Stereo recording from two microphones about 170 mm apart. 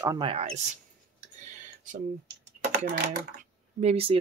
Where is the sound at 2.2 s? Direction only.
85° right.